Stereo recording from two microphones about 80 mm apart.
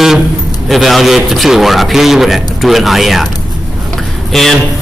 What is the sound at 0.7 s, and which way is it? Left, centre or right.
A man's voice, centre.